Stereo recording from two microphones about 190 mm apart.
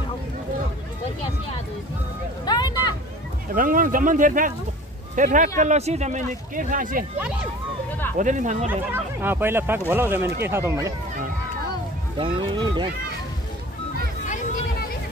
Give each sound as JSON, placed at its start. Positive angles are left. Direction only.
{"t": 2.4, "sound": "vehicle", "side_deg": 20}
{"t": 3.5, "sound": "speech", "side_deg": -45}
{"t": 8.2, "sound": "speech", "side_deg": -40}
{"t": 8.6, "sound": "speech", "side_deg": -10}
{"t": 12.2, "sound": "speech", "side_deg": -25}
{"t": 14.2, "sound": "a sound", "side_deg": 45}